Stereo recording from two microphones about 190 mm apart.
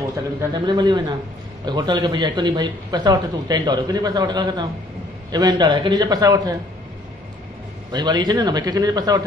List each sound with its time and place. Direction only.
0.4 s speech: 25° right (ahead or behind)
7.9 s speech: 20° right (ahead or behind)